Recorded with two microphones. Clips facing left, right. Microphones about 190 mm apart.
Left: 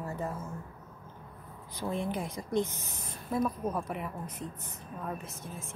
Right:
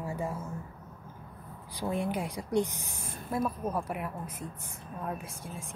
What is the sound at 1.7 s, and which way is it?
A woman's voice, 15° right (ahead or behind).